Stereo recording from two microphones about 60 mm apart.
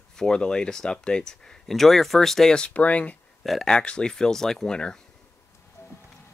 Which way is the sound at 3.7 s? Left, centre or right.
Centre.